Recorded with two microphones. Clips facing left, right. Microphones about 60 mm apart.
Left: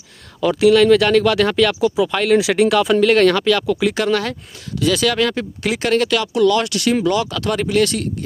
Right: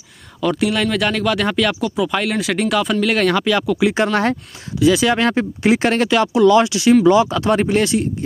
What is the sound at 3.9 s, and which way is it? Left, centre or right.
Speech, right.